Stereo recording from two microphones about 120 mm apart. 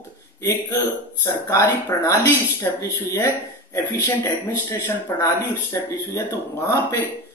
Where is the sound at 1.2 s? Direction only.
20° left (ahead or behind).